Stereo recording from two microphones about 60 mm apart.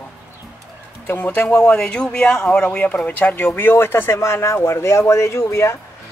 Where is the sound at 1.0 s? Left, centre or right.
Left.